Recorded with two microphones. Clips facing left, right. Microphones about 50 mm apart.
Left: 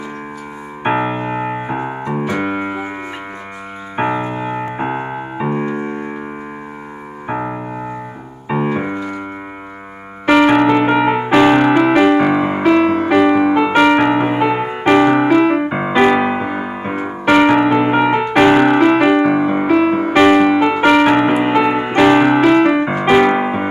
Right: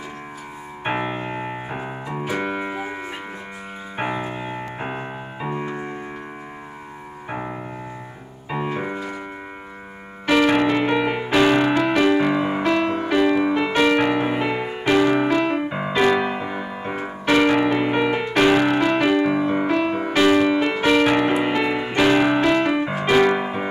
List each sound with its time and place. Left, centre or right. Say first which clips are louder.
0.8 s keyboard: left 8 dB; centre
2.4 s music: left 5 dB; left
3.9 s piano: left 8 dB; centre
5.5 s music: left 7 dB; left
7.2 s music: left 8 dB; left
8.5 s keyboard: left 7 dB; left
10.2 s music: left 6 dB; left
13.1 s music: left 5 dB; left
15.4 s music: left 8 dB; centre
15.9 s music: left 6 dB; left
19.5 s music: left 7 dB; centre
20.1 s music: left 6 dB; left
20.4 s music: left 7 dB; left